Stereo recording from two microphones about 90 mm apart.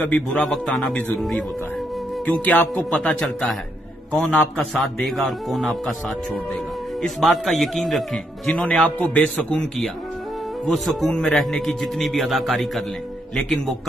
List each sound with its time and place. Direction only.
0.0 s speech: 15° left (ahead or behind)
0.4 s a man's voice: centre (ahead or behind)
2.4 s a man's voice: 20° left (ahead or behind)
10.9 s a man's voice: centre (ahead or behind)